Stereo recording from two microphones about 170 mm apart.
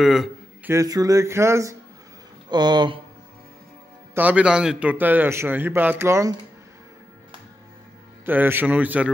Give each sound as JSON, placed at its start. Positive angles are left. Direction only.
{"t": 0.0, "sound": "a man's voice", "side_deg": 0}
{"t": 0.7, "sound": "a man's voice", "side_deg": -20}
{"t": 4.1, "sound": "a man's voice", "side_deg": -10}
{"t": 8.3, "sound": "a man's voice", "side_deg": -10}